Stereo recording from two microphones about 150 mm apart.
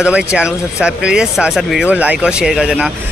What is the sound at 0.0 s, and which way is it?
Speech, 5° right (ahead or behind).